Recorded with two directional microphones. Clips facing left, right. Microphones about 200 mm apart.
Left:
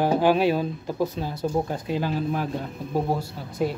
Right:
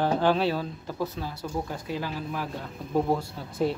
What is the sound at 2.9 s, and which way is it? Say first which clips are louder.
Speech: right 1 dB; 10° left (ahead or behind).